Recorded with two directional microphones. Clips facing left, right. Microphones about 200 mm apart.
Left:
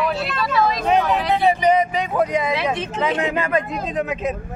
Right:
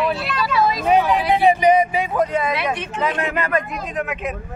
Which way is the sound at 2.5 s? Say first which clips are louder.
Left 1 dB; 25° left (ahead or behind).